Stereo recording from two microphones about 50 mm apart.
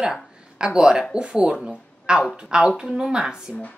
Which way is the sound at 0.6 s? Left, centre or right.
Centre.